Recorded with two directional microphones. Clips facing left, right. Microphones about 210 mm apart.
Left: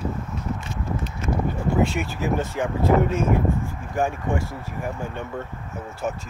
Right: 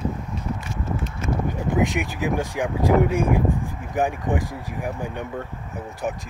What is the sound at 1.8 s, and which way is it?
Speech, 15° right (ahead or behind).